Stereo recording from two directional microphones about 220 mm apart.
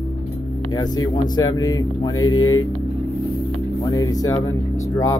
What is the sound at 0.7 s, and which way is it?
Speech, 20° left (ahead or behind).